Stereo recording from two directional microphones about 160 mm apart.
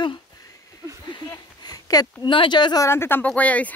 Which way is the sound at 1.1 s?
25° left (ahead or behind).